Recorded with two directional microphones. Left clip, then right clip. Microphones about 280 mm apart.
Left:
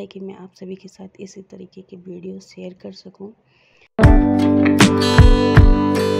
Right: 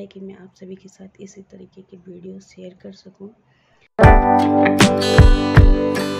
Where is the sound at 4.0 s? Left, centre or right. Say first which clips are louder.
Right 4 dB; centre.